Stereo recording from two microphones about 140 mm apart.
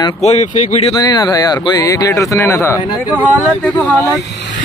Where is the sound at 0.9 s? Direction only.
30° left (ahead or behind).